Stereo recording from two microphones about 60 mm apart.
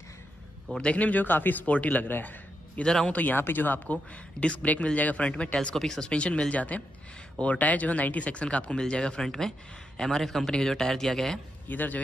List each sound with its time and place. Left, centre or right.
0.7 s speech: left
2.8 s speech: centre
3.1 s a man's voice: left; by 11.3 s centre
11.7 s speech: left